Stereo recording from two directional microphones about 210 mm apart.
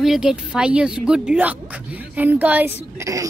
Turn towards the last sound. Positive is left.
turn(degrees=-15)  # may be behind; listen again after turning